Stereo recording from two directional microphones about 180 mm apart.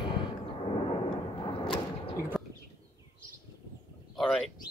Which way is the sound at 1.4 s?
30° left (ahead or behind).